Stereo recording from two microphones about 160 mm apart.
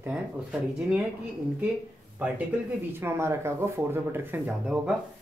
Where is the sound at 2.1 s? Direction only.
10° right (ahead or behind).